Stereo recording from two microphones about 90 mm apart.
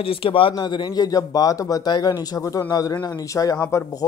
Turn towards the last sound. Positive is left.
turn(degrees=30)  # may be behind; listen again after turning